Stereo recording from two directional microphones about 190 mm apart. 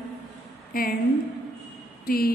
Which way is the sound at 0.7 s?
50° left (ahead or behind).